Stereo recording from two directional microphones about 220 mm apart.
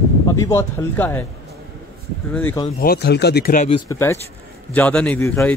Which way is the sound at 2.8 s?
45° left (ahead or behind).